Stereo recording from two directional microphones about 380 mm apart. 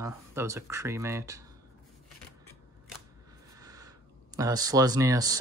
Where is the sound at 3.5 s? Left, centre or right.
Centre.